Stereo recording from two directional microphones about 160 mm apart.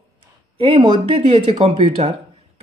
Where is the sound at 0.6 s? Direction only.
35° right (ahead or behind).